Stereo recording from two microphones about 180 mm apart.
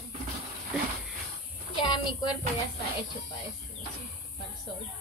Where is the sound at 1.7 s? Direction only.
25° left (ahead or behind).